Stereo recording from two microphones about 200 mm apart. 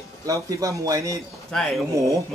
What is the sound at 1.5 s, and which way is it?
Speech, centre (ahead or behind).